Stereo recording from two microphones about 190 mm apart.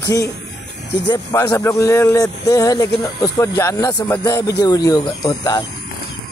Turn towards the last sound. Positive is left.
turn(degrees=20)  # may be behind; listen again after turning